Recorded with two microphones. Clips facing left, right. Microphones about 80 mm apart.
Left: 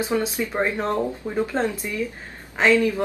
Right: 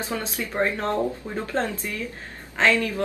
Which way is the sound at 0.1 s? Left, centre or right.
Centre.